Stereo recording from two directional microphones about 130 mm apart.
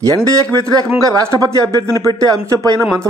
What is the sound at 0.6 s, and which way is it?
Speech, 20° right (ahead or behind).